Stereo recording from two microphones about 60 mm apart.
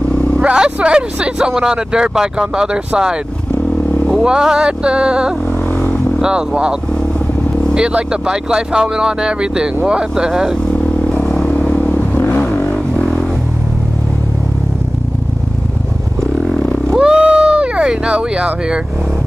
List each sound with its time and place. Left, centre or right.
0.4 s speech: centre
4.2 s speech: centre
7.7 s speech: centre
11.1 s vehicle: centre
12.2 s vehicle: left
17.0 s a sound: centre